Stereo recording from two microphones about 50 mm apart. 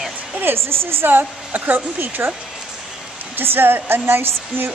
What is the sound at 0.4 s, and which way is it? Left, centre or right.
A woman's voice, right.